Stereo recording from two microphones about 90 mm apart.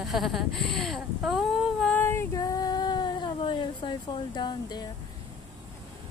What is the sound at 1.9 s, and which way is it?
Female singing, 25° left (ahead or behind).